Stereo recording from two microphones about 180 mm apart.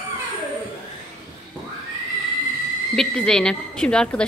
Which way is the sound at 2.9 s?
5° left (ahead or behind).